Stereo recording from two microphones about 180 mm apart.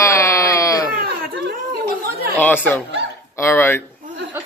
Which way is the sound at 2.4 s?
10° left (ahead or behind).